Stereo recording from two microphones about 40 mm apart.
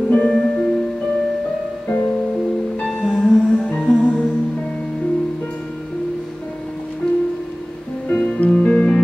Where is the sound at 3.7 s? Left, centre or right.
Left.